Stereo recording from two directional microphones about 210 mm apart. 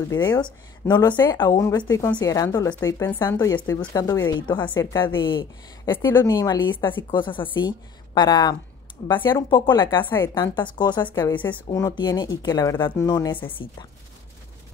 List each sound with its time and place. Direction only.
0.1 s a woman's voice: 20° left (ahead or behind)
10.0 s speech: 10° left (ahead or behind)
11.1 s speech: 10° left (ahead or behind)